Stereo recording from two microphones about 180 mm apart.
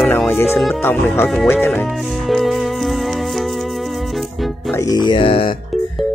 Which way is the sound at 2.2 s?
Centre (ahead or behind).